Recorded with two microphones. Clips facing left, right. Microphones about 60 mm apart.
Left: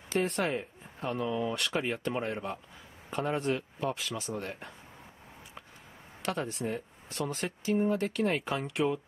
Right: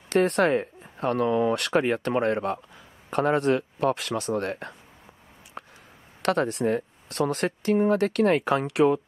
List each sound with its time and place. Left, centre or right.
0.1 s speech: right
5.6 s a sound: right
6.2 s speech: right